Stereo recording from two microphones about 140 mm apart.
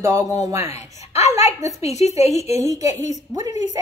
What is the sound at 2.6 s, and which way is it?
A woman's voice, 25° right (ahead or behind).